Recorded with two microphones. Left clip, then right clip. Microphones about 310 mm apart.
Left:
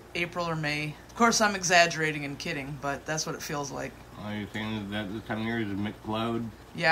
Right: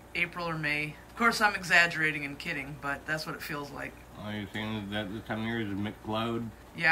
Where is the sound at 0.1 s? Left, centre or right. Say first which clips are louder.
Left 1 dB; centre.